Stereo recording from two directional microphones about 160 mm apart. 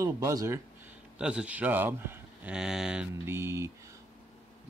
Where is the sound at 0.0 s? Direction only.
20° right (ahead or behind).